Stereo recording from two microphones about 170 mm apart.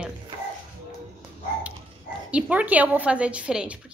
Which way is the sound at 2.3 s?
10° right (ahead or behind).